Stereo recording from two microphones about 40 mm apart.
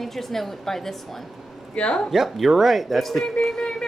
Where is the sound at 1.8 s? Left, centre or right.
Left.